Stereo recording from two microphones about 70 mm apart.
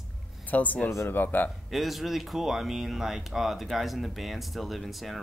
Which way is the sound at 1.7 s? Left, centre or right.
Centre.